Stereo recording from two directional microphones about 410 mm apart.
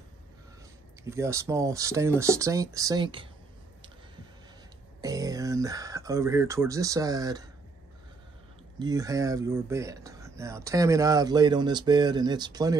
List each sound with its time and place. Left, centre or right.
1.0 s speech: centre
5.0 s speech: centre
8.7 s speech: centre